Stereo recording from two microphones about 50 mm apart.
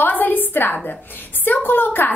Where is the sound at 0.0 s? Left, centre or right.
Left.